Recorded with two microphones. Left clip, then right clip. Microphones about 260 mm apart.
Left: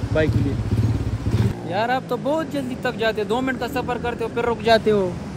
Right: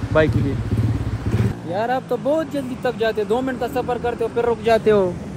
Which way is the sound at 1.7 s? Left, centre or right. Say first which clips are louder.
Right 1 dB; centre.